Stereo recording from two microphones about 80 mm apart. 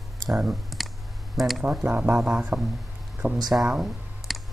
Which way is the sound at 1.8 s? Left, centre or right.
Right.